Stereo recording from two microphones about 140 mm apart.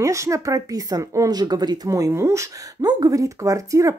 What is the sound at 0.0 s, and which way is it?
Speech, 20° right (ahead or behind).